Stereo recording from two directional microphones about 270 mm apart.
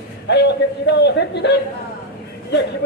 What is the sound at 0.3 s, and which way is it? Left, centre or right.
Speech, left.